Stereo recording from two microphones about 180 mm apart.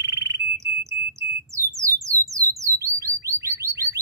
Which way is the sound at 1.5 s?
15° right (ahead or behind).